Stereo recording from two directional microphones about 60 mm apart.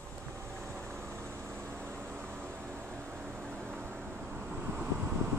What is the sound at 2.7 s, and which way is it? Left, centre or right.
Vehicle, centre.